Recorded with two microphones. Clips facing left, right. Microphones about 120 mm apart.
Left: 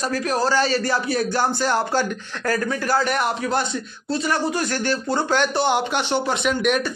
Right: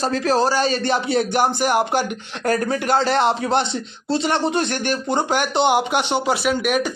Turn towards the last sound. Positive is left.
turn(degrees=-5)  # may be behind; listen again after turning